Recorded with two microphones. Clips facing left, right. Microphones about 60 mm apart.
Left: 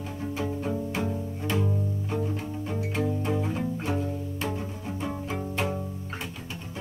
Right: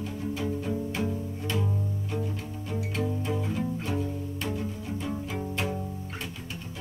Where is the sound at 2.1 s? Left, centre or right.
Left.